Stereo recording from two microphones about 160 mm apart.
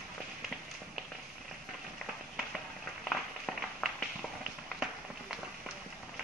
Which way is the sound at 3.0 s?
Centre (ahead or behind).